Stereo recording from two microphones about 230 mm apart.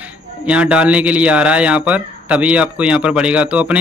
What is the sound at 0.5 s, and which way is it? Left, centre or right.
Speech, centre.